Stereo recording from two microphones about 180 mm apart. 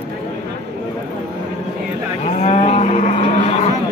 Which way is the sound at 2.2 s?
35° left (ahead or behind).